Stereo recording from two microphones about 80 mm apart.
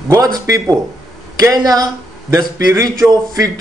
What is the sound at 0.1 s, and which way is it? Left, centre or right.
A man's voice, right.